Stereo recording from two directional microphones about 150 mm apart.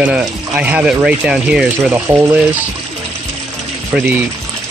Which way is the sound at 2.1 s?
15° right (ahead or behind).